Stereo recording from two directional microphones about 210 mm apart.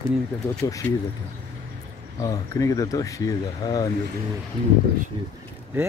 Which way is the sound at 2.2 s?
15° left (ahead or behind).